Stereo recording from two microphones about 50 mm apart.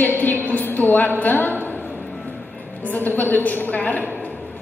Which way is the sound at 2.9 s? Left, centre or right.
Left.